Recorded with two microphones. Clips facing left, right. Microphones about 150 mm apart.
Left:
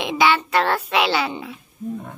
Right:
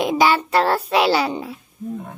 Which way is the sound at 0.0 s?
40° right (ahead or behind).